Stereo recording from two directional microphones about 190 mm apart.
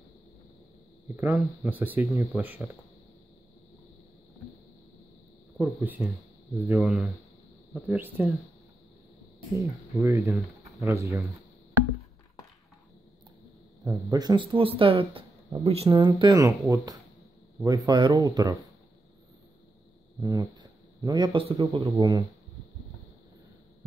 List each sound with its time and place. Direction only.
1.0 s speech: 10° right (ahead or behind)
5.6 s speech: 10° right (ahead or behind)
9.6 s speech: 15° right (ahead or behind)
13.8 s speech: 20° right (ahead or behind)
20.2 s speech: 20° right (ahead or behind)